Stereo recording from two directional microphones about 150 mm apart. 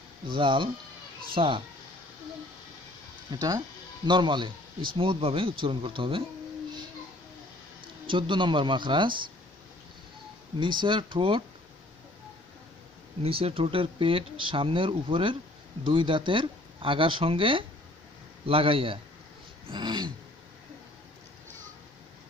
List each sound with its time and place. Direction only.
0.3 s speech: 35° right (ahead or behind)
3.3 s speech: 25° right (ahead or behind)
7.8 s speech: 35° right (ahead or behind)
10.6 s speech: 30° right (ahead or behind)
13.2 s speech: 40° right (ahead or behind)